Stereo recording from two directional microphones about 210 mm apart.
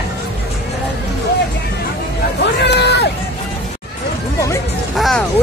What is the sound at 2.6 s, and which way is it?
Speech, 55° left (ahead or behind).